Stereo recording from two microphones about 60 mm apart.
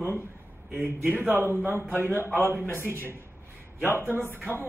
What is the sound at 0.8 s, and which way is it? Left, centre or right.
Speech, right.